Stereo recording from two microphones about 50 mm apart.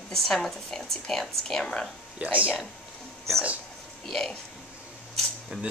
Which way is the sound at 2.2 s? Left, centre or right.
Right.